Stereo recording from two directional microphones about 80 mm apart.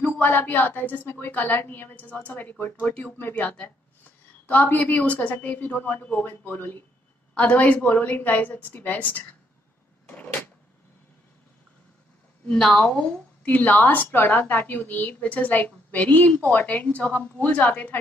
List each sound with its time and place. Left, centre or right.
0.0 s a woman's voice: left
10.0 s a sound: left
12.4 s a woman's voice: centre